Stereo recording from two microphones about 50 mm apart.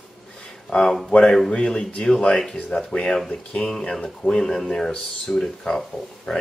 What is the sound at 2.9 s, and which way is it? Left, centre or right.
Speech, left.